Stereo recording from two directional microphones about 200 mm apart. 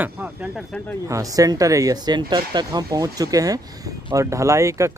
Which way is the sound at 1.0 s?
15° right (ahead or behind).